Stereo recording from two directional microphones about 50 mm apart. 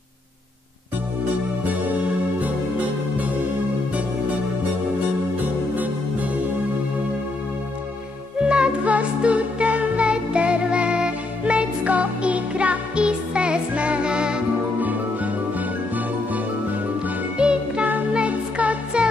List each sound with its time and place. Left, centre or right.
5.4 s music: right
8.4 s music: centre
14.8 s music: right
17.4 s music: centre